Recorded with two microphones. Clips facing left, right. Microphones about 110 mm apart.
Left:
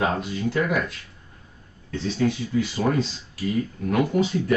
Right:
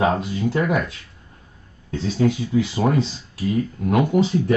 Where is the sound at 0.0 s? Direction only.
20° right (ahead or behind).